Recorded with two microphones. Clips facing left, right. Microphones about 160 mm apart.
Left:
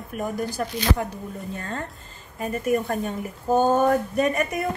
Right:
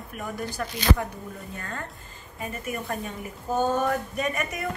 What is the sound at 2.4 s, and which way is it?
A woman's voice, 40° left (ahead or behind).